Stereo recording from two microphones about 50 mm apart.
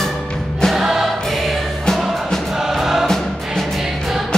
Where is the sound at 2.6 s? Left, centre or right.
Centre.